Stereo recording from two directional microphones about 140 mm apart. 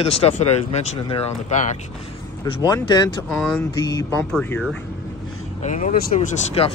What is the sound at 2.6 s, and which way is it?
Speech, 25° left (ahead or behind).